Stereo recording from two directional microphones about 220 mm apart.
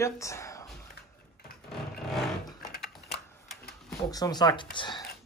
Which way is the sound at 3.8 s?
15° left (ahead or behind).